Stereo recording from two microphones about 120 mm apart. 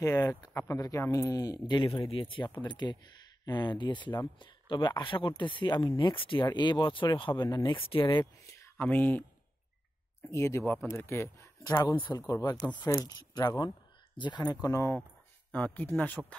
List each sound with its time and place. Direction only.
0.0 s speech: 25° left (ahead or behind)
1.8 s speech: 45° left (ahead or behind)
7.4 s speech: 30° left (ahead or behind)
7.7 s speech: 40° left (ahead or behind)
8.5 s a sound: 25° left (ahead or behind)
8.8 s speech: 15° left (ahead or behind)
10.3 s speech: 25° left (ahead or behind); by 12.2 s 40° left (ahead or behind)
12.2 s speech: 30° left (ahead or behind)
15.5 s speech: 15° left (ahead or behind)